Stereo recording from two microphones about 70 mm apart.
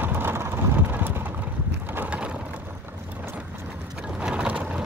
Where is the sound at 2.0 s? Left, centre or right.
Centre.